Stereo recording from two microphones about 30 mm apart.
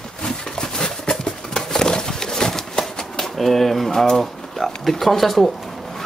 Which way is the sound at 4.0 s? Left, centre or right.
Centre.